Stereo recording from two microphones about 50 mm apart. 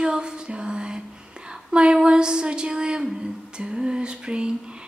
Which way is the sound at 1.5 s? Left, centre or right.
Centre.